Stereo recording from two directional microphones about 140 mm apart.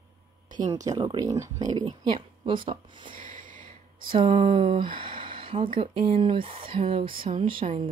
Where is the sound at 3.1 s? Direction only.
70° right (ahead or behind).